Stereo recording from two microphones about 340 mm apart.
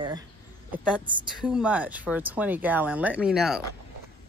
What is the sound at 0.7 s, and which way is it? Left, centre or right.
Speech, centre.